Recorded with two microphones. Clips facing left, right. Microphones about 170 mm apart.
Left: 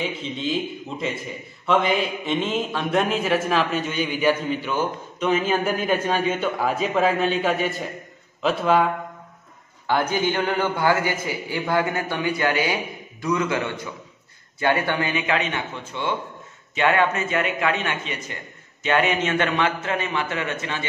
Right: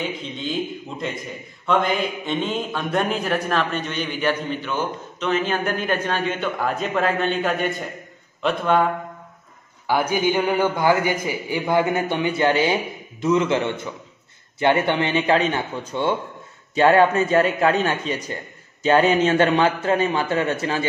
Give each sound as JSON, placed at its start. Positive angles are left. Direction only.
{"t": 0.2, "sound": "a man's voice", "side_deg": 0}
{"t": 9.8, "sound": "a man's voice", "side_deg": -10}